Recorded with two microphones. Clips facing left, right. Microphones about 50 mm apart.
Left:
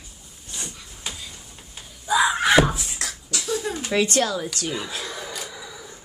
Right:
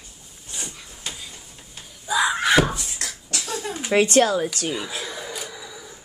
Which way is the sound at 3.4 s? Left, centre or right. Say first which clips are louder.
Left 4 dB; right.